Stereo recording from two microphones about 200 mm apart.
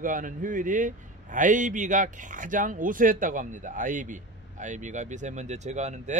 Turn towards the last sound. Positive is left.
turn(degrees=-35)  # may be behind; listen again after turning